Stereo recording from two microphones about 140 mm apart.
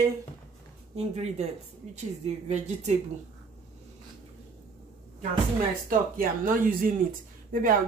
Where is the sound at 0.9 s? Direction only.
50° right (ahead or behind).